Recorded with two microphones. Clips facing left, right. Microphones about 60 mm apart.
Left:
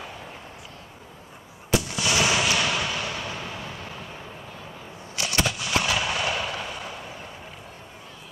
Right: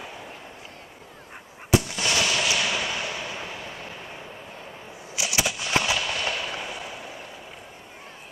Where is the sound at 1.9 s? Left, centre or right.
Centre.